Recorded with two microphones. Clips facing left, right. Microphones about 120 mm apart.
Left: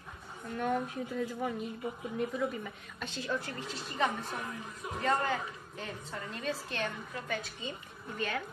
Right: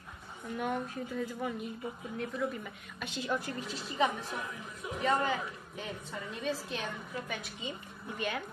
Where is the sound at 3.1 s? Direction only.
15° right (ahead or behind).